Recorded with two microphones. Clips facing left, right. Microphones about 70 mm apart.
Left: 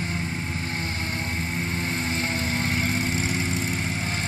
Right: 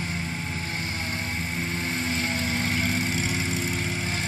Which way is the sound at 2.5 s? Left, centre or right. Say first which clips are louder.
Left 1 dB; left.